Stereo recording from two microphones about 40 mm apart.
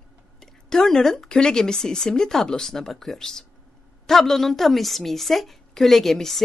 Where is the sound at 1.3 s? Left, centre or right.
Centre.